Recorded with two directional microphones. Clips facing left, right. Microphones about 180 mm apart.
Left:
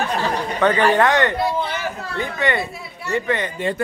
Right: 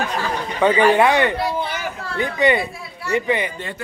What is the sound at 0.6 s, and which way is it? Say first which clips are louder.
Speech: right 2 dB; 10° right (ahead or behind).